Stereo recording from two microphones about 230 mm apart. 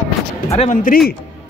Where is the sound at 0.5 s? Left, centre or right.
Left.